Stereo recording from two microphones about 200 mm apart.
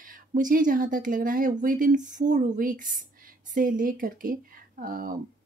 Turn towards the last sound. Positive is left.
turn(degrees=-45)  # may be behind; listen again after turning